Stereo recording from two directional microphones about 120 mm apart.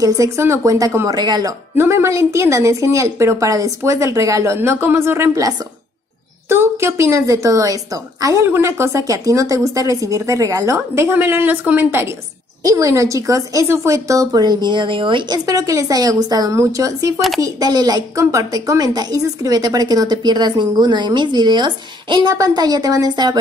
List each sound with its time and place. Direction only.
0.0 s speech: 25° right (ahead or behind)
1.8 s speech: 25° right (ahead or behind)
6.5 s speech: 20° right (ahead or behind)
12.6 s speech: 25° right (ahead or behind)